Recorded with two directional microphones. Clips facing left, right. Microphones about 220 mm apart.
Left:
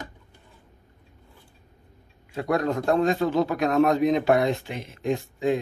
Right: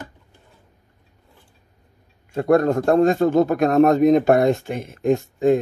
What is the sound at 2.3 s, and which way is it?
A man's voice, 50° right (ahead or behind).